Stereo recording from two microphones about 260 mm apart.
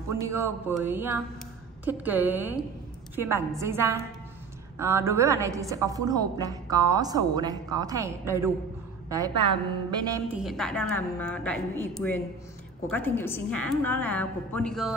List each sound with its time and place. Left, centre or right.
0.1 s a woman's voice: centre
10.3 s a woman's voice: centre